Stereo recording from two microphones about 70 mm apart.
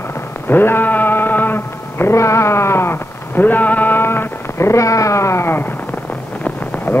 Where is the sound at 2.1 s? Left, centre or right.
Left.